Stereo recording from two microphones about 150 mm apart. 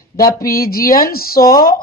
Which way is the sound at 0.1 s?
75° left (ahead or behind).